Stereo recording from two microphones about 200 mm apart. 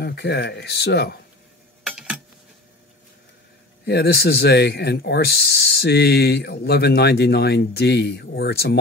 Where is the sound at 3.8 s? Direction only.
55° left (ahead or behind).